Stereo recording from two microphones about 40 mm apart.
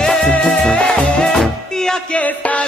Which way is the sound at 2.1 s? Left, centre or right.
Left.